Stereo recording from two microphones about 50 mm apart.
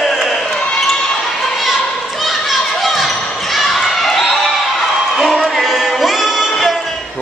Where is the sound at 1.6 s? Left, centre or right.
Centre.